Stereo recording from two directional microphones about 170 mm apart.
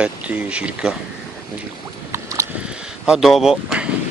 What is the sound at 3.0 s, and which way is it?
Speech, 5° right (ahead or behind).